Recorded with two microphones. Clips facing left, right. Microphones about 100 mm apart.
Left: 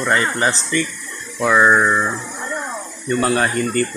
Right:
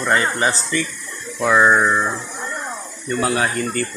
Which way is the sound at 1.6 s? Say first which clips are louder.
Left 1 dB; 5° left (ahead or behind).